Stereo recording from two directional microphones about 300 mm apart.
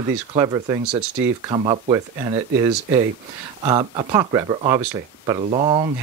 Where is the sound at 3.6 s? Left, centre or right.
Centre.